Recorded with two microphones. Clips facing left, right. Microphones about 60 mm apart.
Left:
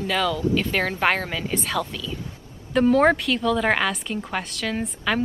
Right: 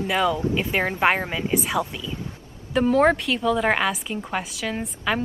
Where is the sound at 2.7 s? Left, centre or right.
Centre.